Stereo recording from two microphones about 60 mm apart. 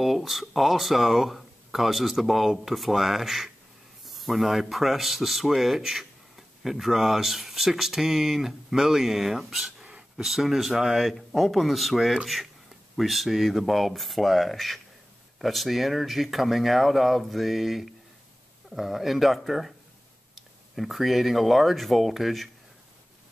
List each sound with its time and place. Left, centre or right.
0.0 s speech: centre
9.8 s a sound: centre
10.2 s speech: centre